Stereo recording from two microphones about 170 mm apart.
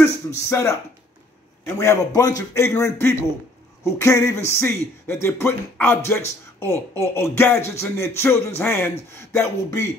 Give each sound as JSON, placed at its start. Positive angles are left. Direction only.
{"t": 0.0, "sound": "speech", "side_deg": 15}